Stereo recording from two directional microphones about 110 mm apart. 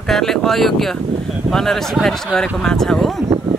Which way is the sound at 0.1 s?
5° left (ahead or behind).